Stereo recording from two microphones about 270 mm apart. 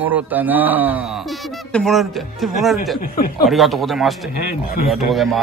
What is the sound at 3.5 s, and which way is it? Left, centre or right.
A man's voice, centre.